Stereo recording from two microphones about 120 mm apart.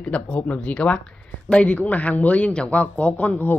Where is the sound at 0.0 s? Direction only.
10° left (ahead or behind).